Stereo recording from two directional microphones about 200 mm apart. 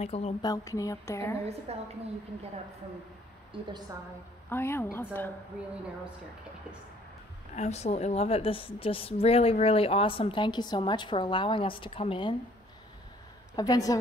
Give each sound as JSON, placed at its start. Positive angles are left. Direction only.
{"t": 0.0, "sound": "speech", "side_deg": 30}
{"t": 0.4, "sound": "a woman's voice", "side_deg": 20}
{"t": 1.7, "sound": "a woman's voice", "side_deg": -30}
{"t": 3.5, "sound": "a woman's voice", "side_deg": -25}
{"t": 4.5, "sound": "a woman's voice", "side_deg": 10}
{"t": 7.5, "sound": "a woman's voice", "side_deg": 35}
{"t": 13.6, "sound": "a woman's voice", "side_deg": 20}